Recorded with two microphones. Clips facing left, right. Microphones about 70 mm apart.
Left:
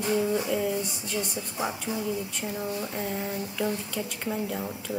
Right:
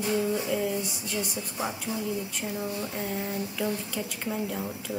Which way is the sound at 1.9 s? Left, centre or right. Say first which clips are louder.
Left 1 dB; left.